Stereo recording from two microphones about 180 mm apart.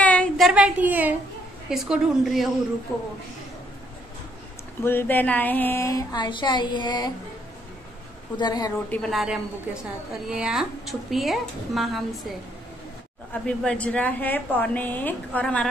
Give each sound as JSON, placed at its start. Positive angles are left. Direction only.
{"t": 0.0, "sound": "a sound", "side_deg": 5}
{"t": 1.7, "sound": "a woman's voice", "side_deg": 0}
{"t": 4.8, "sound": "a woman's voice", "side_deg": 10}
{"t": 8.4, "sound": "a woman's voice", "side_deg": 25}
{"t": 8.9, "sound": "a woman's voice", "side_deg": 0}